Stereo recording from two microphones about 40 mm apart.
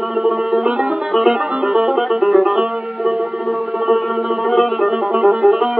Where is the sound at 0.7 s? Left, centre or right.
Right.